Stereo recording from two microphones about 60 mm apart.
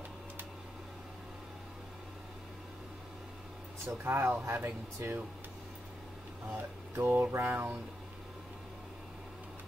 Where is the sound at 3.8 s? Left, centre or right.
Right.